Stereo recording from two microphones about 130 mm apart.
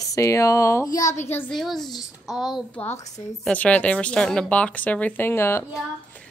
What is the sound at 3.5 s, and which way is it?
Speech, 10° left (ahead or behind).